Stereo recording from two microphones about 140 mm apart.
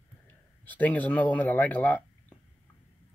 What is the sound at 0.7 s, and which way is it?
Speech, 10° left (ahead or behind).